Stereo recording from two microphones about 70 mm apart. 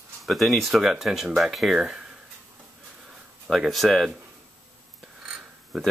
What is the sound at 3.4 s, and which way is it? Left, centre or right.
Speech, centre.